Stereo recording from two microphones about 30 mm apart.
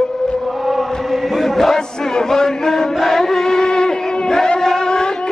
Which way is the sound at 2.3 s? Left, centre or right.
Centre.